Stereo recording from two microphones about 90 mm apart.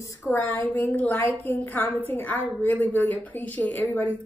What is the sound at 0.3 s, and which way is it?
A woman's voice, 20° left (ahead or behind).